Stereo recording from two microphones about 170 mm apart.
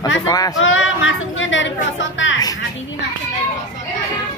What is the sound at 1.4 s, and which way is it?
Speech, 90° left.